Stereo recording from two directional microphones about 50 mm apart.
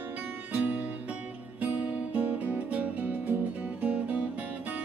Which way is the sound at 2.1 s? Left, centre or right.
Right.